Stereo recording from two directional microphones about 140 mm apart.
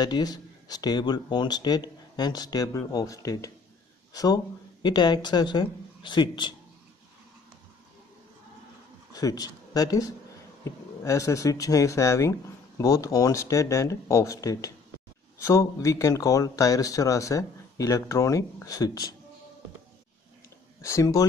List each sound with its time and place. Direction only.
0.0 s speech: 30° left (ahead or behind)
9.1 s speech: 25° left (ahead or behind)
20.8 s speech: 20° left (ahead or behind)